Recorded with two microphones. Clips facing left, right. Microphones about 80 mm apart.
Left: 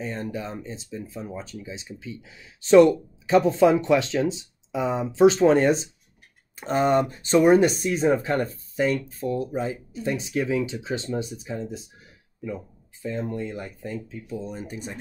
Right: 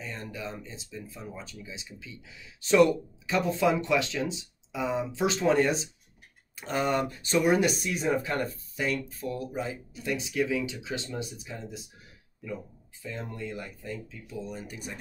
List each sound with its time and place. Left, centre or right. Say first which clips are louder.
0.0 s speech: left 7 dB; left
13.3 s speech: left 6 dB; left